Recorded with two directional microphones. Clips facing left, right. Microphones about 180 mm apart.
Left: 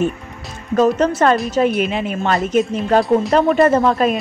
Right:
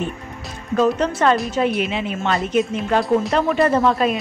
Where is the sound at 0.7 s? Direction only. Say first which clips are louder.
Left 4 dB; 45° left (ahead or behind).